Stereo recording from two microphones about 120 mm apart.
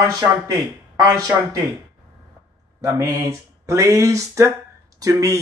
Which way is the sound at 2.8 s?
30° right (ahead or behind).